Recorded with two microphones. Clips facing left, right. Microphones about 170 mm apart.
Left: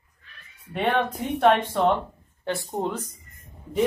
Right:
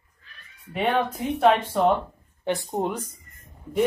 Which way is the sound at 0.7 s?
5° right (ahead or behind).